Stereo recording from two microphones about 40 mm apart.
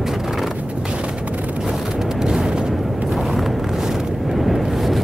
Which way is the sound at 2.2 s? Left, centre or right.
Centre.